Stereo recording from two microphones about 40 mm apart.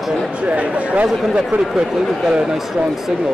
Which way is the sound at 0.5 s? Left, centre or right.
Right.